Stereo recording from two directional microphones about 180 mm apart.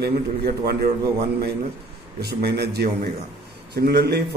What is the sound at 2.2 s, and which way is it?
A man's voice, 65° right (ahead or behind).